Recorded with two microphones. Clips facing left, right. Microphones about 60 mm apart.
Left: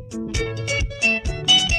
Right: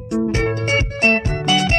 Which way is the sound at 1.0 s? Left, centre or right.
Right.